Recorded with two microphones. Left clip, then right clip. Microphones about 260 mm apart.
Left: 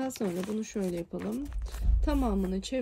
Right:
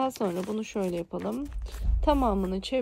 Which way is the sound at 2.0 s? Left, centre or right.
Right.